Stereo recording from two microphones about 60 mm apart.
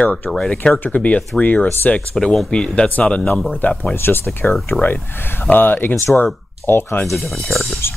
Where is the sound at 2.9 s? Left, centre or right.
Left.